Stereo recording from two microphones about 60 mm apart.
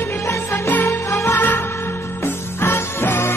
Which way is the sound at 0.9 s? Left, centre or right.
Left.